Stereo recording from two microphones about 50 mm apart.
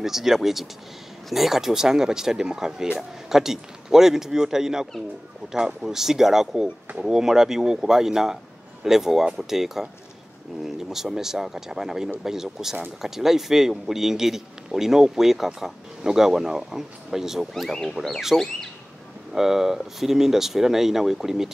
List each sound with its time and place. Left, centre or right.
0.0 s speech: centre
5.8 s speech: centre
17.6 s speech: centre
19.3 s speech: centre